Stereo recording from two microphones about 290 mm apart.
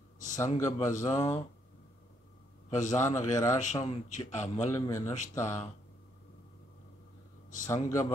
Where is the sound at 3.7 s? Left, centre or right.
Left.